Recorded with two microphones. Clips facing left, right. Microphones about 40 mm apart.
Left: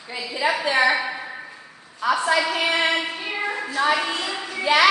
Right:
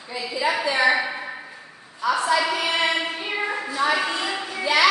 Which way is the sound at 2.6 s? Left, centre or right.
Left.